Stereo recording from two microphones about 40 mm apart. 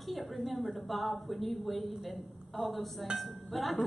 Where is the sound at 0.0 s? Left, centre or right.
Centre.